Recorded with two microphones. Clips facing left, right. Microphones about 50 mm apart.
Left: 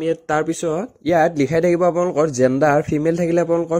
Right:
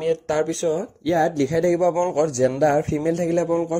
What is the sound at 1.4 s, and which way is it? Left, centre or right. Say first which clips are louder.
Speech: left 3 dB; left.